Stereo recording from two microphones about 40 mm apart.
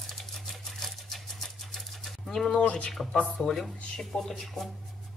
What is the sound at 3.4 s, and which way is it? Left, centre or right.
Speech, centre.